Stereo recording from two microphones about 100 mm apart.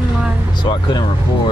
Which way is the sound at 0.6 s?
50° left (ahead or behind).